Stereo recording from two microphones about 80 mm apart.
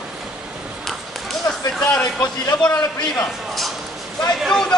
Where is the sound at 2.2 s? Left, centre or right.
Left.